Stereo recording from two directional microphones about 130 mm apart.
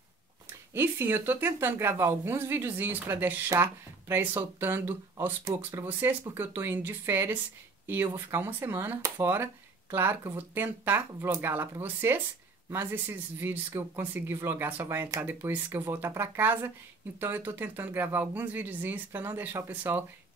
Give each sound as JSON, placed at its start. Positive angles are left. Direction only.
{"t": 0.7, "sound": "a woman's voice", "side_deg": -20}